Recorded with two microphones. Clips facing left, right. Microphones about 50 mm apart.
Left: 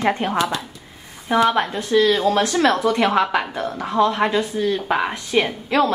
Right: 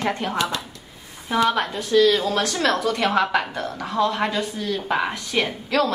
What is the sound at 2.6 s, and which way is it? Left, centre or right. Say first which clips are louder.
Speech: left 4 dB; left.